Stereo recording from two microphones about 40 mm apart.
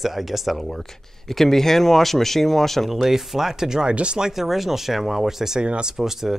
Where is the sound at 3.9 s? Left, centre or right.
Right.